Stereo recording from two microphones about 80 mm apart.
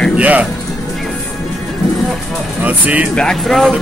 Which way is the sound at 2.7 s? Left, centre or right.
Centre.